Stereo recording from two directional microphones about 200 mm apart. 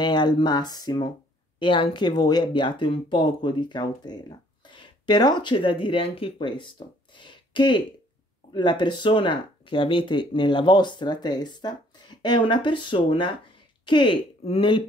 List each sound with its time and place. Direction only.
0.0 s speech: 20° left (ahead or behind)